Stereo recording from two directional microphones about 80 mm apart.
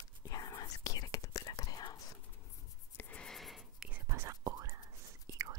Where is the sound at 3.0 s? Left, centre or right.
Centre.